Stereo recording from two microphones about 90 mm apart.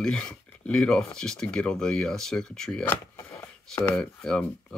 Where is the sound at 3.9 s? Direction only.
10° left (ahead or behind).